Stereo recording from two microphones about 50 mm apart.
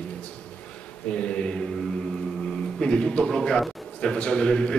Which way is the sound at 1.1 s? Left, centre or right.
Left.